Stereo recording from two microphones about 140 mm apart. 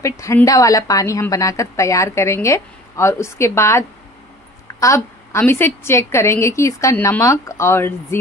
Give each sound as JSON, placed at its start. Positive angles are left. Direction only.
{"t": 0.0, "sound": "a woman's voice", "side_deg": 20}